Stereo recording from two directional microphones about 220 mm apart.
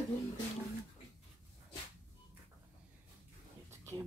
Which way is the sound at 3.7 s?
10° right (ahead or behind).